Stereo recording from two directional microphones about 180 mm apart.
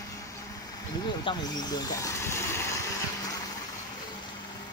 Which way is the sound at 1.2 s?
20° left (ahead or behind).